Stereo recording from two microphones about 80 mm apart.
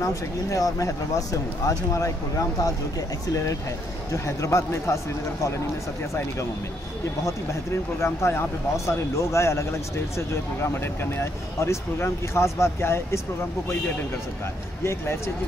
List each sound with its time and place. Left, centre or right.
0.0 s speech: left
4.1 s speech: left
8.0 s speech: left
14.8 s speech: left